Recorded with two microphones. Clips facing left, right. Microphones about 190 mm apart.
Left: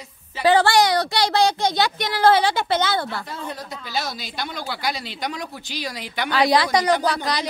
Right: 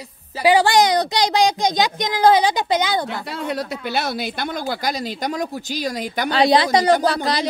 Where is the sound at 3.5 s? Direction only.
65° right (ahead or behind); by 6.3 s 45° right (ahead or behind).